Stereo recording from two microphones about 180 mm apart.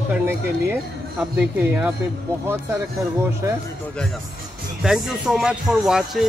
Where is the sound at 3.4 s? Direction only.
15° right (ahead or behind).